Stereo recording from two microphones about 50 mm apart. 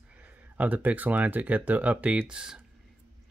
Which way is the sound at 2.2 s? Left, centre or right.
Centre.